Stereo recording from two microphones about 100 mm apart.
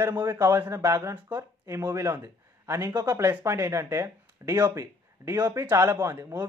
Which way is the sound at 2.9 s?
40° right (ahead or behind).